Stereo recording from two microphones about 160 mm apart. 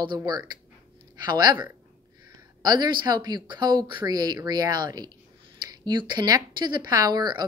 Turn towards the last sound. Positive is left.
turn(degrees=-25)  # may be behind; listen again after turning